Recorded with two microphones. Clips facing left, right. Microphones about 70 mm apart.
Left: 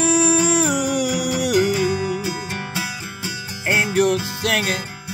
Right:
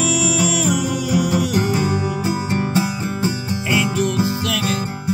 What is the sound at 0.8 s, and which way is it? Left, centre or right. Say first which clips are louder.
Music: right 1 dB; left.